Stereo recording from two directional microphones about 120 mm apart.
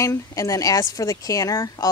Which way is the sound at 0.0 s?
25° left (ahead or behind).